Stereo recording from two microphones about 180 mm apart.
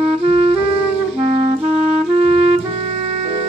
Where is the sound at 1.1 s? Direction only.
35° right (ahead or behind).